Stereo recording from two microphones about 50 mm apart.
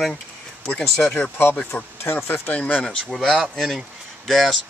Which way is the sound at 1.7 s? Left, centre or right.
Left.